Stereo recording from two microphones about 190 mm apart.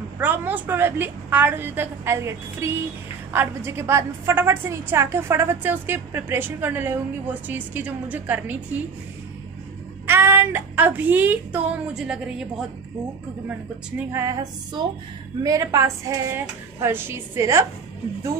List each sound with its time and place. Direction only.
0.2 s a woman's voice: 10° right (ahead or behind)
10.0 s a woman's voice: 10° right (ahead or behind)
13.9 s a woman's voice: 15° right (ahead or behind)